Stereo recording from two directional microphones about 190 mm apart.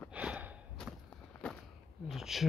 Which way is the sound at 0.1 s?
5° right (ahead or behind).